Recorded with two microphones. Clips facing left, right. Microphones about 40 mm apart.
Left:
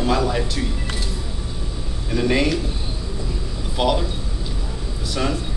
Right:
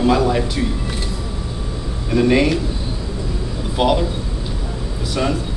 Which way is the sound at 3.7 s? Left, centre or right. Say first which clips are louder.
Right 3 dB; centre.